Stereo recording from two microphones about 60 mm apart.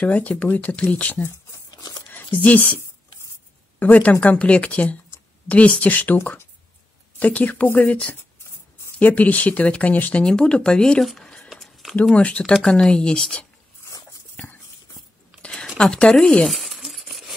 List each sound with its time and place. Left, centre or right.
0.0 s speech: left
2.4 s speech: left
3.8 s speech: left
7.2 s speech: left
9.0 s speech: left
10.2 s speech: centre
11.1 s a sound: centre
12.2 s speech: centre
14.3 s horse: left
15.8 s speech: centre
16.5 s a sound: centre